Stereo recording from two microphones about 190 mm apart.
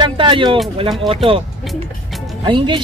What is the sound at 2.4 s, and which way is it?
Speech, 25° right (ahead or behind).